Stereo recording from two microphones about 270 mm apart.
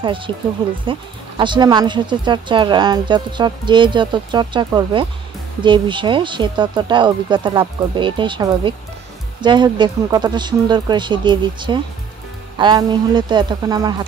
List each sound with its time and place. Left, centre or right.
0.3 s speech: centre